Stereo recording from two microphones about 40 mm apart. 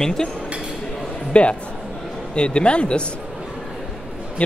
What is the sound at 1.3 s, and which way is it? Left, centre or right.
A man's voice, left.